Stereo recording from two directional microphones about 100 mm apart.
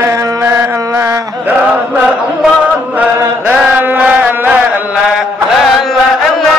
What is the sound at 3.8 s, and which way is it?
Chant, 15° right (ahead or behind).